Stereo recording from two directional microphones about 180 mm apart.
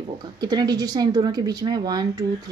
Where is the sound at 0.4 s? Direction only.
20° right (ahead or behind).